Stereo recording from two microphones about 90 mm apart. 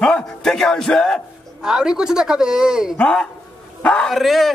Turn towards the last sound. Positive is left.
turn(degrees=0)  # may be behind; listen again after turning